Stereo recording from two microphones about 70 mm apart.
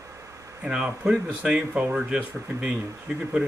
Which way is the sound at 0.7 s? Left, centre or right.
Centre.